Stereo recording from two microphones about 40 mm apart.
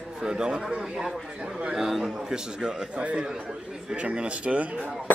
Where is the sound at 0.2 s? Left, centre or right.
Centre.